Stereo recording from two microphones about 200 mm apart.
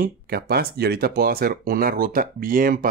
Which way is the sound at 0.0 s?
50° right (ahead or behind).